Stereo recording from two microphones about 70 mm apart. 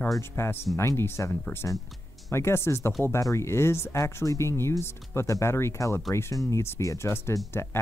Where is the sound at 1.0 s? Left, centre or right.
Left.